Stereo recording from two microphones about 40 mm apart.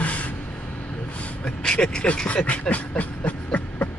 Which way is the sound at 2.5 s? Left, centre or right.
Left.